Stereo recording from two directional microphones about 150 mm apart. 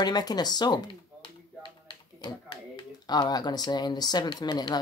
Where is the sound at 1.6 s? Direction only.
30° left (ahead or behind).